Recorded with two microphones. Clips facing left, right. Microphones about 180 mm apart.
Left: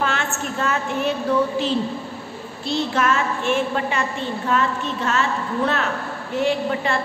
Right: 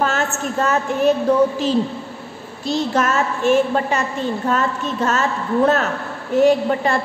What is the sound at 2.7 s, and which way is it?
A woman's voice, 40° right (ahead or behind).